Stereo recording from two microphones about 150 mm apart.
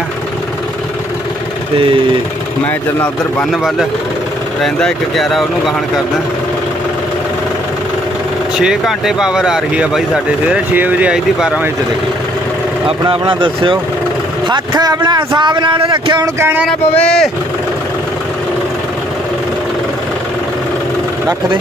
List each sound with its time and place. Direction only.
4.6 s speech: 5° left (ahead or behind)
8.5 s speech: 5° right (ahead or behind)
13.1 s speech: 35° right (ahead or behind)
16.3 s music: 15° right (ahead or behind)
17.0 s speech: 5° left (ahead or behind)